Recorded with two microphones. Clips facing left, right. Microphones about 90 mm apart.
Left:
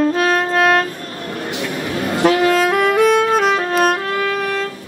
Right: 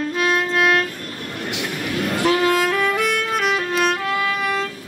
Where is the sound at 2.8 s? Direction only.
35° left (ahead or behind).